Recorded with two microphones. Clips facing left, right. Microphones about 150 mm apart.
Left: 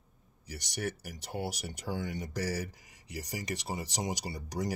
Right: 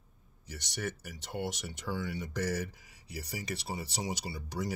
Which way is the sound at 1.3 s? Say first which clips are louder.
Even; 5° left (ahead or behind).